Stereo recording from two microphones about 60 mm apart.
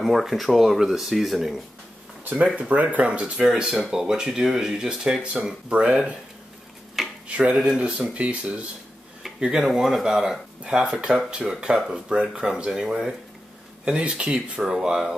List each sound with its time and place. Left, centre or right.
0.0 s speech: centre
2.4 s speech: centre
3.4 s speech: centre
7.2 s speech: right
7.5 s speech: centre
7.8 s speech: centre
9.4 s speech: centre